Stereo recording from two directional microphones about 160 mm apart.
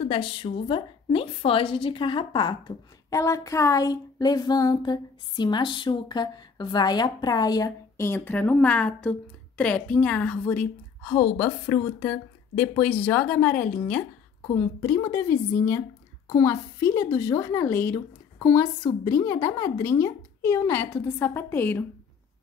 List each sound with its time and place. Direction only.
0.0 s a woman's voice: 35° left (ahead or behind); by 21.8 s 15° left (ahead or behind)